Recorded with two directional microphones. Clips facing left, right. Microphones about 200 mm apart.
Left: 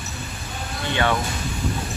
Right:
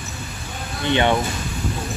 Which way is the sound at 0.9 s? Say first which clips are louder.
Right 4 dB; 20° right (ahead or behind).